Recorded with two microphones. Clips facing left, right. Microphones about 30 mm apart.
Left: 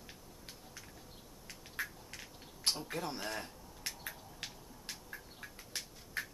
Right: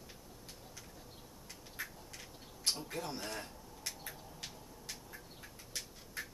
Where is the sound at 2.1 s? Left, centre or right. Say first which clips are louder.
Left 1 dB; centre.